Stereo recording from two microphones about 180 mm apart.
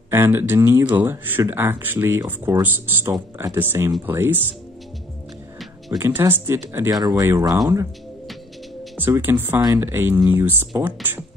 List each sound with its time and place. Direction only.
0.1 s speech: 10° right (ahead or behind)
5.9 s speech: 15° right (ahead or behind)
8.9 s speech: 10° right (ahead or behind)